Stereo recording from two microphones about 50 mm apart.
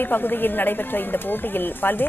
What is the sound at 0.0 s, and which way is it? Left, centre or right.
Speech, left.